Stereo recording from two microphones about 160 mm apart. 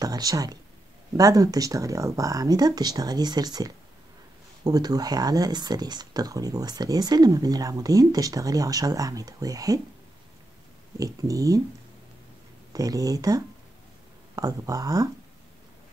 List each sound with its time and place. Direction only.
0.0 s speech: 25° right (ahead or behind)
11.0 s speech: 20° right (ahead or behind)
12.7 s speech: 20° right (ahead or behind)